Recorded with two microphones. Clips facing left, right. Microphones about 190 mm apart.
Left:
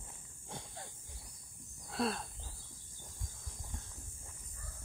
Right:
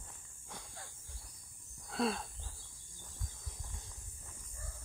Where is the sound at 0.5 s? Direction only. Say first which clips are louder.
Left 4 dB; 25° left (ahead or behind).